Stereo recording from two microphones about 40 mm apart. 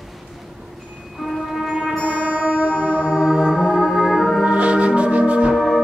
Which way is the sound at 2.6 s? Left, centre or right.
Centre.